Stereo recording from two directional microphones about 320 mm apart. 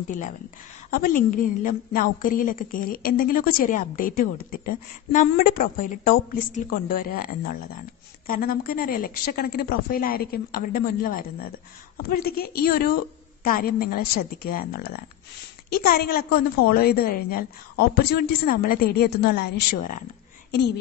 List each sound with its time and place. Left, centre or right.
1.0 s a woman's voice: left
8.3 s a woman's voice: left
15.9 s a woman's voice: left